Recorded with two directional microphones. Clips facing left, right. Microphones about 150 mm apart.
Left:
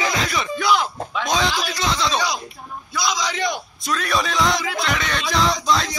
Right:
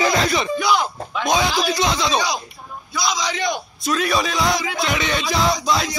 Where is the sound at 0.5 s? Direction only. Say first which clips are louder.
Right 1 dB; centre (ahead or behind).